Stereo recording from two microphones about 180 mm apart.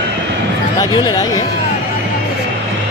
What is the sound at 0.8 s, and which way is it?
Speech, 20° left (ahead or behind).